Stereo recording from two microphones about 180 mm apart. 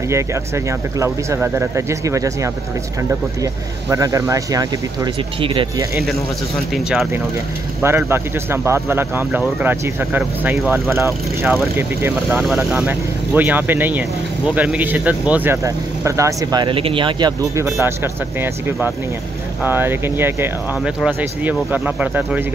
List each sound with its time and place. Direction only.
0.1 s speech: 15° right (ahead or behind)
3.9 s speech: 20° right (ahead or behind)
6.7 s speech: centre (ahead or behind)
7.8 s speech: 15° right (ahead or behind)
12.3 s speech: centre (ahead or behind)